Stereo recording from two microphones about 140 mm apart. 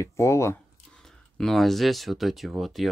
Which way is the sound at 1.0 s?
5° left (ahead or behind).